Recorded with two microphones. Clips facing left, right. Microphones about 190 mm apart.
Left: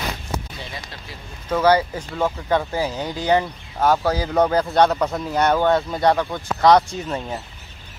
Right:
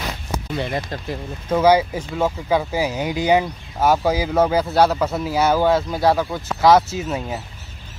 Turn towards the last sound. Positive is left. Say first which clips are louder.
# right 2 dB
turn(degrees=-5)  # may be behind; listen again after turning